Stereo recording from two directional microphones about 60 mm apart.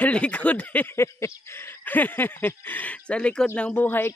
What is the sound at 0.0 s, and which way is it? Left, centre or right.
Speech, left.